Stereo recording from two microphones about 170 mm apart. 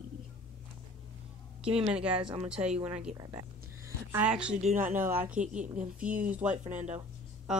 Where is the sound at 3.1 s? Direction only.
20° right (ahead or behind).